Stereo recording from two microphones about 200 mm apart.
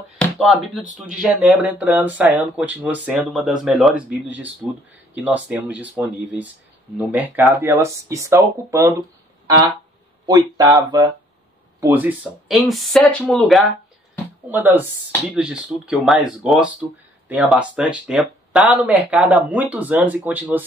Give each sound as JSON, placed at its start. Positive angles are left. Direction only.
{"t": 0.4, "sound": "speech", "side_deg": 0}
{"t": 10.2, "sound": "speech", "side_deg": -20}
{"t": 14.5, "sound": "speech", "side_deg": -10}